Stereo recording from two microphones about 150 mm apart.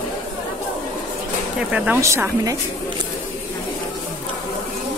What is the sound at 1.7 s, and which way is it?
Speech, 15° right (ahead or behind).